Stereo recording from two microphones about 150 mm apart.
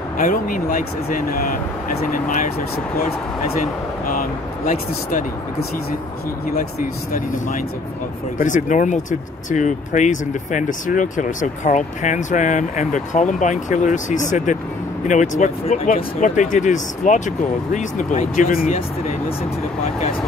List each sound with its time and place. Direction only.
0.2 s speech: 65° left (ahead or behind)
4.1 s speech: 65° left (ahead or behind)
6.5 s speech: 65° left (ahead or behind)